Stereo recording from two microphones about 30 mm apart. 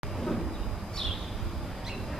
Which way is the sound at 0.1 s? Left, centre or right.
Centre.